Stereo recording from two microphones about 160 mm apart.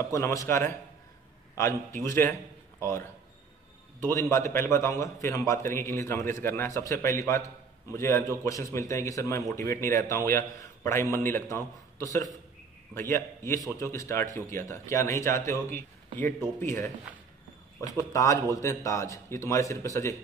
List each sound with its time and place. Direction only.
0.0 s a man's voice: 20° left (ahead or behind)
18.1 s a man's voice: 20° left (ahead or behind)